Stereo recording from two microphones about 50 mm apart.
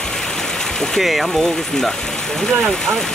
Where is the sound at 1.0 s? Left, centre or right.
Centre.